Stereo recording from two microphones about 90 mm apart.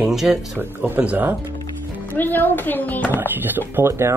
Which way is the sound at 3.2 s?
20° right (ahead or behind).